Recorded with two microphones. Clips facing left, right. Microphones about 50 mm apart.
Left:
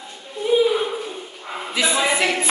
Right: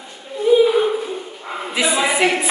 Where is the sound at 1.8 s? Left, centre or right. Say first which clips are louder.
Right 2 dB; centre.